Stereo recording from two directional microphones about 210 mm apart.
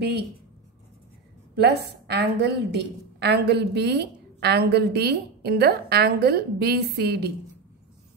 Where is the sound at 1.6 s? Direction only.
50° right (ahead or behind).